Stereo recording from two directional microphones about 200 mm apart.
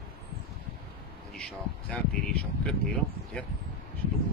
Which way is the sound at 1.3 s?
5° left (ahead or behind).